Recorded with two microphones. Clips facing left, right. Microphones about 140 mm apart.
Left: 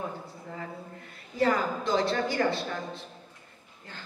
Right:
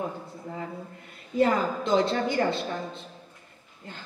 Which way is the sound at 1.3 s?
20° right (ahead or behind).